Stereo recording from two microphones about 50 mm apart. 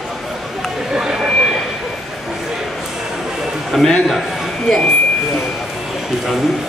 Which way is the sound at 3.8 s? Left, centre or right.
Centre.